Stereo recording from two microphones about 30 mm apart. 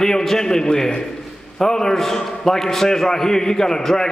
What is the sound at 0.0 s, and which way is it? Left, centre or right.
A man's voice, centre.